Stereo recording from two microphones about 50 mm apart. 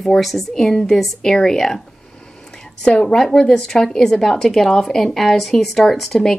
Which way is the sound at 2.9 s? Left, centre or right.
Left.